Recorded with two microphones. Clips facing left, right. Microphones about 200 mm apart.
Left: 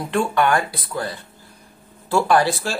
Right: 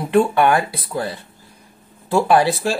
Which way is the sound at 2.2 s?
25° right (ahead or behind).